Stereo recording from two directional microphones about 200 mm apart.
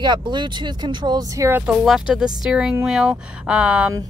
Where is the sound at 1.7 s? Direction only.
5° right (ahead or behind).